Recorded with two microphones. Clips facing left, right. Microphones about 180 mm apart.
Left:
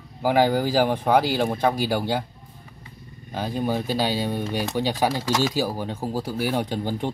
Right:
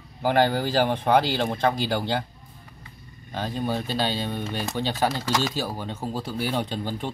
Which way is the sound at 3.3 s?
10° left (ahead or behind).